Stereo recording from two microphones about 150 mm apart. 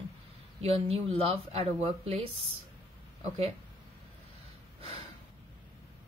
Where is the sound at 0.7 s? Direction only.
40° right (ahead or behind).